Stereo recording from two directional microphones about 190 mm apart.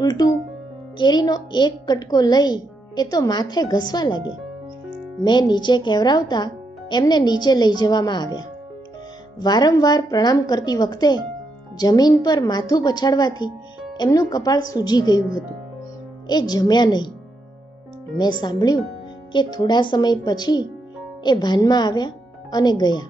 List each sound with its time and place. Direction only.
0.0 s speech: 20° left (ahead or behind)
5.2 s speech: 20° left (ahead or behind)
16.3 s speech: 20° left (ahead or behind)
18.1 s speech: 20° left (ahead or behind)